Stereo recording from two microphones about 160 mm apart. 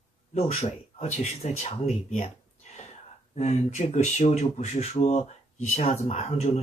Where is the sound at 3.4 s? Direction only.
45° left (ahead or behind).